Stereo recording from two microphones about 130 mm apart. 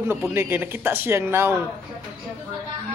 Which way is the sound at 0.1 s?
20° right (ahead or behind).